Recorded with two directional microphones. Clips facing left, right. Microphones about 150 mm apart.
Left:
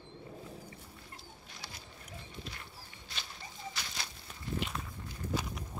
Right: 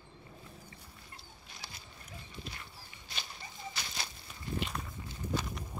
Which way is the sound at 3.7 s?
10° right (ahead or behind).